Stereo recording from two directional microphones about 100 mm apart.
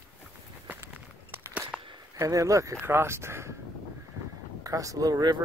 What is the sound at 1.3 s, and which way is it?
Crackle, 20° right (ahead or behind).